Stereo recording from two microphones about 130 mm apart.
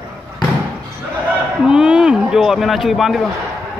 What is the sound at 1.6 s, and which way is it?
A man's voice, 5° right (ahead or behind).